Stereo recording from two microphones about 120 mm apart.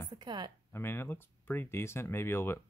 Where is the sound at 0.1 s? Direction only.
40° right (ahead or behind).